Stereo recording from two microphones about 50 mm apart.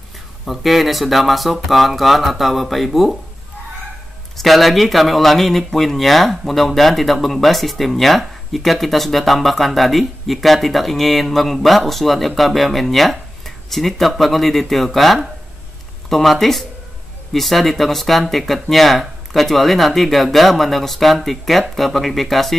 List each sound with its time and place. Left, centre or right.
0.5 s speech: centre
4.4 s speech: centre